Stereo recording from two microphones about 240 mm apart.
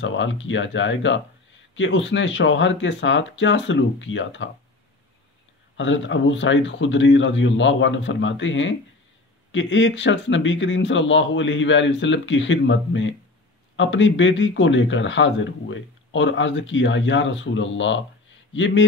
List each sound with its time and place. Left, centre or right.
0.0 s speech: left
5.8 s speech: left